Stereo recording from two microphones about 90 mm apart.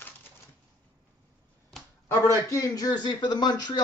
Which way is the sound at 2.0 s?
30° left (ahead or behind).